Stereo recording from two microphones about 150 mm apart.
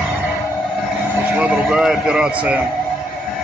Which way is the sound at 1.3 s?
10° right (ahead or behind).